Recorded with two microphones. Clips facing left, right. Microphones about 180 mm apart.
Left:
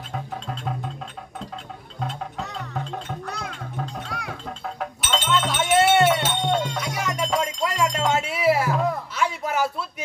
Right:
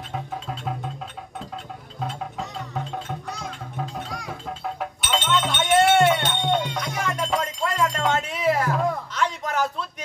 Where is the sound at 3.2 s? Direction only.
60° left (ahead or behind).